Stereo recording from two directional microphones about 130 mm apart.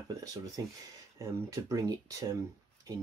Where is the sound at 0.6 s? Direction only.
30° right (ahead or behind).